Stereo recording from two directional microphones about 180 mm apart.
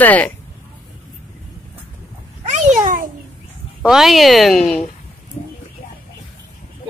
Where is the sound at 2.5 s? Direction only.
45° right (ahead or behind).